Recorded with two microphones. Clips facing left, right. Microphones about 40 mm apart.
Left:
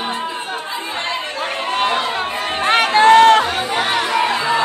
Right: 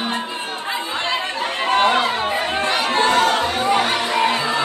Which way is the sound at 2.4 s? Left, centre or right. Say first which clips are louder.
Left 4 dB; left.